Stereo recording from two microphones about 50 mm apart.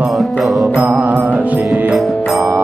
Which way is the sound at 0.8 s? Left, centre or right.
Right.